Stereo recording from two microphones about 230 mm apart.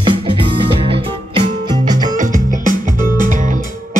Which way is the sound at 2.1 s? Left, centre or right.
Right.